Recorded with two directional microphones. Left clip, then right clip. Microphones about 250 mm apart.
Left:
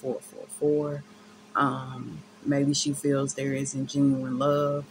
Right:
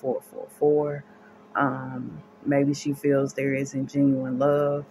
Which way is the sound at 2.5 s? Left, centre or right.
Centre.